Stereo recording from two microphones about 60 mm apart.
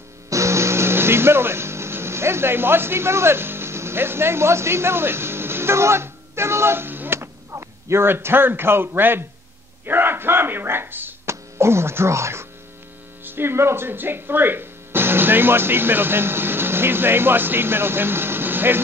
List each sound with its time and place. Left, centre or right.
0.3 s music: right
7.2 s speech: right
11.2 s speech: right
13.2 s speech: right